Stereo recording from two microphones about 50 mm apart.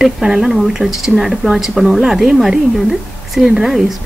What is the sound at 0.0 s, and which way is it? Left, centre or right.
Speech, centre.